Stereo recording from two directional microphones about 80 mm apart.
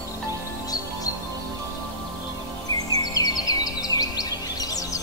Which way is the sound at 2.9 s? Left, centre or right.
Left.